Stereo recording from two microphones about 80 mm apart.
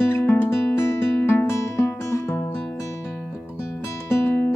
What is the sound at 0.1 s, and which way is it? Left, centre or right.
Music, left.